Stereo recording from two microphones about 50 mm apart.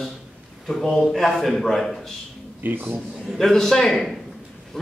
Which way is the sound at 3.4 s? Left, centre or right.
Centre.